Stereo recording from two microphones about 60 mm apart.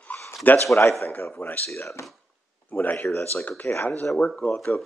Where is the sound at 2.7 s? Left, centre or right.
Left.